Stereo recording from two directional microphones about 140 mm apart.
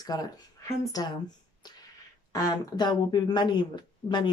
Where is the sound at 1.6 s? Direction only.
30° left (ahead or behind).